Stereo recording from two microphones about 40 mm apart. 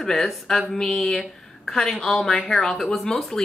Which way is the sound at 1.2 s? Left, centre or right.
Centre.